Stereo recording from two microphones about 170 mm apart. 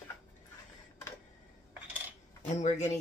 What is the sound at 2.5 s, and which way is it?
Speech, 45° left (ahead or behind).